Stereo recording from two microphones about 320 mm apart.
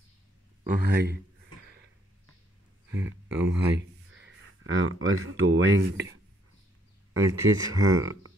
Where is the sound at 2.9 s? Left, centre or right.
Centre.